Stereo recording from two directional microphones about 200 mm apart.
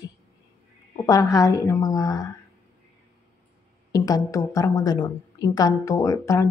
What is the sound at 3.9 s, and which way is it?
A woman's voice, 20° left (ahead or behind).